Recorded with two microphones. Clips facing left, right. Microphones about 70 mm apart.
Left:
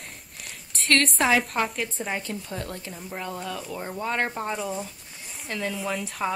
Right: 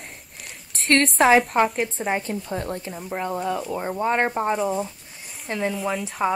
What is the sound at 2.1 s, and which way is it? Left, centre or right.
Speech, right.